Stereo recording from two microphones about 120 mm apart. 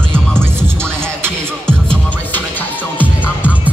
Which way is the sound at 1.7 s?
10° left (ahead or behind).